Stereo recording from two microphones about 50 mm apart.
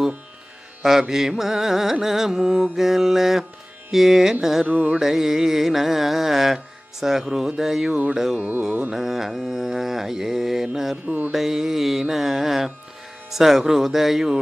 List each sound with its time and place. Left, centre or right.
0.8 s music: centre
4.6 s music: right
4.9 s music: centre
7.9 s music: centre
8.4 s music: right
8.9 s music: centre
11.1 s music: right
11.3 s music: centre